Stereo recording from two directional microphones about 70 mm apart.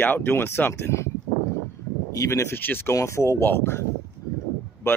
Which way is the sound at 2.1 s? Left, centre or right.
Left.